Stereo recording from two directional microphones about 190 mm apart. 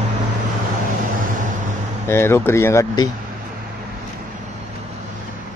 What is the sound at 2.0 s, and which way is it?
Speech, 15° left (ahead or behind).